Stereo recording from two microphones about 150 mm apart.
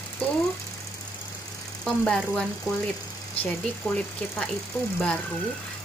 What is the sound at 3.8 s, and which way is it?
Speech, 10° left (ahead or behind).